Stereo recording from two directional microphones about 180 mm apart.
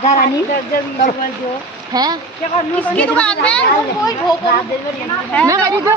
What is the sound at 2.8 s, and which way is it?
Speech, 5° left (ahead or behind).